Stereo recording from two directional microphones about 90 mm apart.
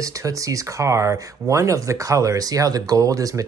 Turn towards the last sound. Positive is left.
turn(degrees=-40)  # may be behind; listen again after turning